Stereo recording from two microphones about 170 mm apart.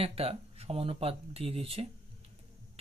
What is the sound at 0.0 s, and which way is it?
Speech, 35° right (ahead or behind).